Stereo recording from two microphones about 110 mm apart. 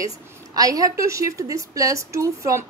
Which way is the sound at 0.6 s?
35° right (ahead or behind).